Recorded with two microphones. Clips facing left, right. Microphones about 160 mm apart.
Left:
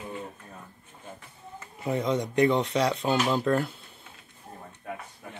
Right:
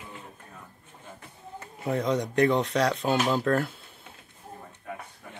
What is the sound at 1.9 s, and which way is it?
Speech, centre (ahead or behind).